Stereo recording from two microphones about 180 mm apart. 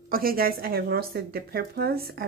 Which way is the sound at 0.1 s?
55° right (ahead or behind).